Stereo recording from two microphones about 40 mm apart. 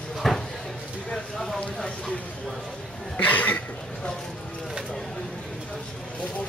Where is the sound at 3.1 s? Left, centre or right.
Left.